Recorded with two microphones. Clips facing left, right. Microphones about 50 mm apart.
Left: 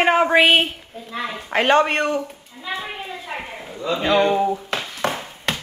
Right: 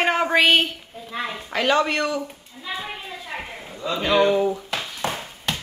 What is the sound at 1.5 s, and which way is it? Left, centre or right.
Speech, left.